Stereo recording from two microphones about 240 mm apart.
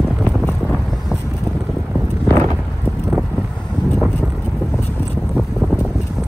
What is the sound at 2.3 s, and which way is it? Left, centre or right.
Clip-clop, centre.